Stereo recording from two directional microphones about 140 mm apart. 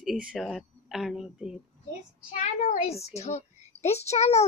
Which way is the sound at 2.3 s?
55° left (ahead or behind).